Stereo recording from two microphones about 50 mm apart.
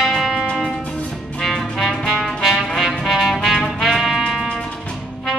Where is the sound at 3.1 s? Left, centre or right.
Centre.